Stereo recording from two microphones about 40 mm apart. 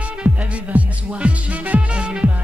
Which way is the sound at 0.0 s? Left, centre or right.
Right.